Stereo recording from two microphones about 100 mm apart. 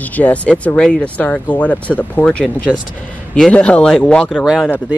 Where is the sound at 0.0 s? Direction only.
15° left (ahead or behind).